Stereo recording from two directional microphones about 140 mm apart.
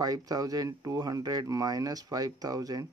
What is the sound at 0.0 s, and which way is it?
Speech, 25° right (ahead or behind).